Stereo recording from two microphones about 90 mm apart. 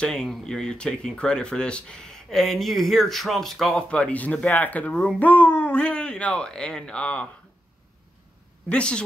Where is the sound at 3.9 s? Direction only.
15° left (ahead or behind).